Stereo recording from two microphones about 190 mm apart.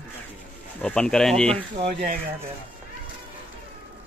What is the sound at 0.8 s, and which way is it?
Speech, 5° left (ahead or behind).